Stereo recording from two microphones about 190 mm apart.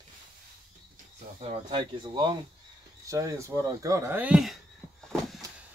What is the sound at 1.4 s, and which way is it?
Speech, 30° right (ahead or behind).